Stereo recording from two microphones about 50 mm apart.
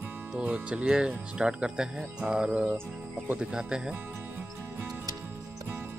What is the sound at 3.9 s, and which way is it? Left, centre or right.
Music, right.